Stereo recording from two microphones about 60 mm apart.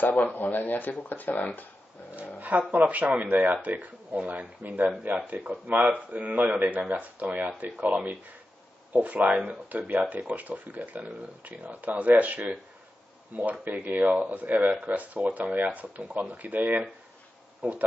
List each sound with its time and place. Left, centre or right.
0.0 s speech: left
2.7 s speech: right